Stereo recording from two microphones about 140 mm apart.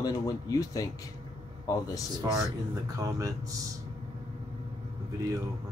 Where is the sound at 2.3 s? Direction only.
25° right (ahead or behind).